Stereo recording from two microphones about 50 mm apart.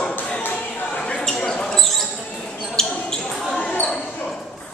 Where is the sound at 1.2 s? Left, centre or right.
Centre.